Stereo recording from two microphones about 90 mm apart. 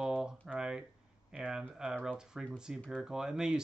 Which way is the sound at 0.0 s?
10° right (ahead or behind).